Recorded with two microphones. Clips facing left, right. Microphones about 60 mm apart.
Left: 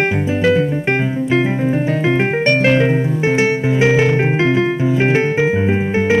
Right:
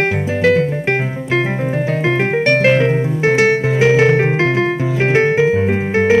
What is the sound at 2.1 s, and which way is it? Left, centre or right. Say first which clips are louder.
Music: even; centre.